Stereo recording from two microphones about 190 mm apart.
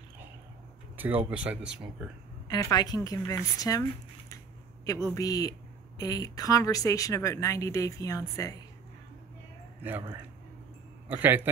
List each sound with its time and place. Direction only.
0.9 s speech: 10° right (ahead or behind)
2.4 s a woman's voice: 20° left (ahead or behind)
5.0 s speech: 15° left (ahead or behind)
11.1 s speech: 10° right (ahead or behind)